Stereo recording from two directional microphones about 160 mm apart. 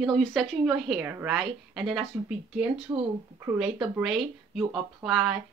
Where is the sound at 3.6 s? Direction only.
5° right (ahead or behind).